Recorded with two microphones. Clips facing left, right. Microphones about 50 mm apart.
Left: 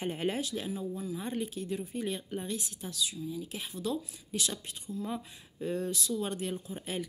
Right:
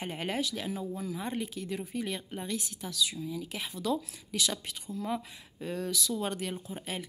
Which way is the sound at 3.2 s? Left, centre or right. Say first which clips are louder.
Right 1 dB; right.